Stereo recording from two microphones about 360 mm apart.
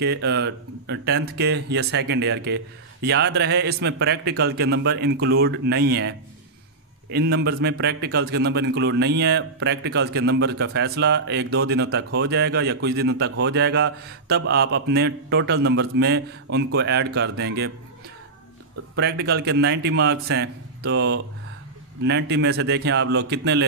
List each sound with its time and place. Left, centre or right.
0.0 s a man's voice: right
18.9 s a man's voice: right